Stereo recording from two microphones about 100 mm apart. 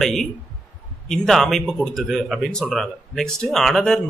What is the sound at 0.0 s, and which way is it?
A man's voice, centre (ahead or behind).